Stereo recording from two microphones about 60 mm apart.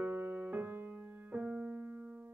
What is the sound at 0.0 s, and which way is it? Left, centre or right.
Music, right.